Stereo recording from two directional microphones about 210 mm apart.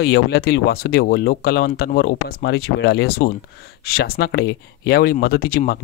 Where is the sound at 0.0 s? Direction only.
50° left (ahead or behind).